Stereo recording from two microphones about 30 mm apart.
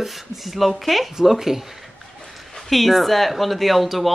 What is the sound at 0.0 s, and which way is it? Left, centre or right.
Speech, centre.